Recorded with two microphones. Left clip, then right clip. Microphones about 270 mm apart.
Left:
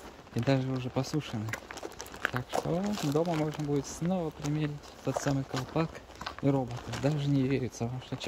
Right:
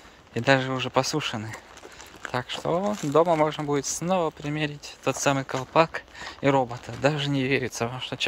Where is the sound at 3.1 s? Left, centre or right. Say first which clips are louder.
Right 12 dB; centre.